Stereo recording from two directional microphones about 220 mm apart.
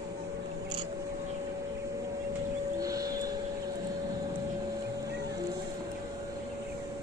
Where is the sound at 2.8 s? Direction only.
15° right (ahead or behind).